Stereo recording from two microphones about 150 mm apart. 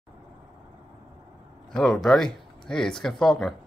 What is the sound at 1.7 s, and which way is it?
Speech, 5° left (ahead or behind).